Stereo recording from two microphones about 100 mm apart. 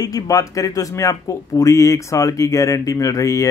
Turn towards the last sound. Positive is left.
turn(degrees=35)  # may be behind; listen again after turning